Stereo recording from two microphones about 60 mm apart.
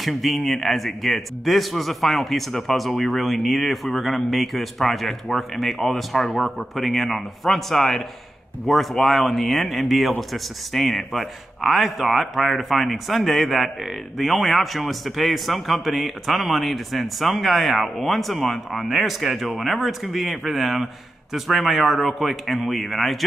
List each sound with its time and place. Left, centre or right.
0.0 s a man's voice: centre